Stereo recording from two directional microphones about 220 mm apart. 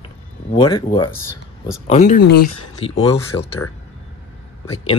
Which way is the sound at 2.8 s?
25° left (ahead or behind).